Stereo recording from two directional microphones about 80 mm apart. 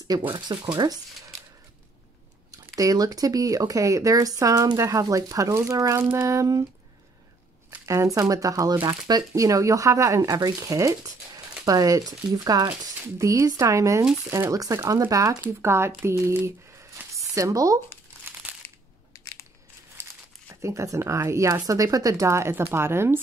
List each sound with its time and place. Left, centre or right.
0.1 s speech: right
0.5 s speech: right
2.5 s speech: right
7.8 s speech: right
9.3 s speech: right
13.2 s speech: right
15.4 s speech: right
18.4 s a sound: centre
19.1 s crushing: left
20.4 s speech: right